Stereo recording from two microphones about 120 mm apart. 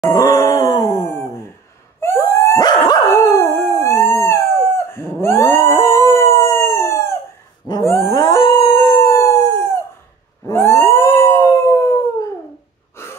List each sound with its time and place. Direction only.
0.0 s a sound: 25° left (ahead or behind)
3.1 s howl: 25° left (ahead or behind)
13.0 s wheeze: 20° left (ahead or behind)